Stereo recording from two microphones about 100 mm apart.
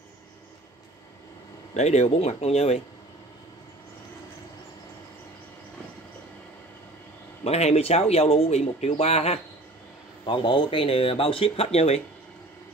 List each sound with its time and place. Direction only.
1.7 s speech: 90° left
7.4 s speech: 90° left
10.2 s speech: 55° left (ahead or behind); by 12.0 s 90° left